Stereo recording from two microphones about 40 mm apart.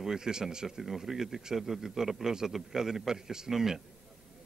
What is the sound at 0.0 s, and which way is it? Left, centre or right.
Speech, centre.